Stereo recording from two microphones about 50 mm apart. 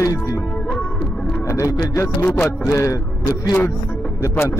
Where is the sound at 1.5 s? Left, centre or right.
Left.